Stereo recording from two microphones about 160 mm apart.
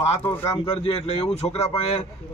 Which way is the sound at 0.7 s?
40° left (ahead or behind).